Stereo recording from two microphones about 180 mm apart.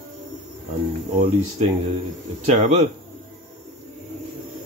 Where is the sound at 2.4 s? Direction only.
40° right (ahead or behind).